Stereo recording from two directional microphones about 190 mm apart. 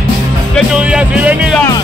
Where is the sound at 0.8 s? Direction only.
5° right (ahead or behind).